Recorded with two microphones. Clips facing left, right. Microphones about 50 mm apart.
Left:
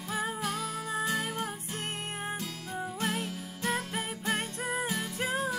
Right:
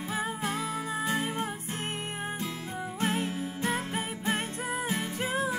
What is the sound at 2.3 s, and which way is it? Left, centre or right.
Music, right.